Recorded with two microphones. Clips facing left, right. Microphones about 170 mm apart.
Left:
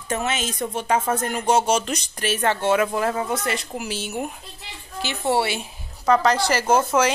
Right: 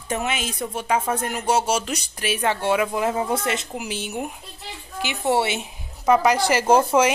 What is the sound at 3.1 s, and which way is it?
Speech, 25° right (ahead or behind).